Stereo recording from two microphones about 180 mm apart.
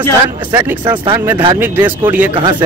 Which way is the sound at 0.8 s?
25° right (ahead or behind).